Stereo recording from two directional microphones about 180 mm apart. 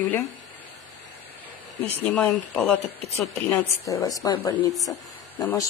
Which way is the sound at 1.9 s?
10° left (ahead or behind).